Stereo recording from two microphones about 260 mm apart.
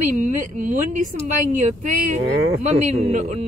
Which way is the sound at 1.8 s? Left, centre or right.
Right.